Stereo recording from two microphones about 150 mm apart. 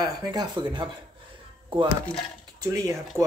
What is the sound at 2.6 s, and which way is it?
Speech, 20° right (ahead or behind).